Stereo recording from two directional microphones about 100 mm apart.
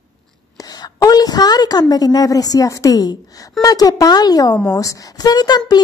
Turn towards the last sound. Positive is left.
turn(degrees=45)  # may be behind; listen again after turning